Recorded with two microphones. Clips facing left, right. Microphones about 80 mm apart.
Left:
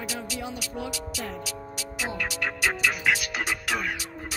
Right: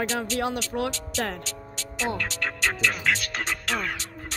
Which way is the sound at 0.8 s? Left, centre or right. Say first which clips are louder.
Right 5 dB; right.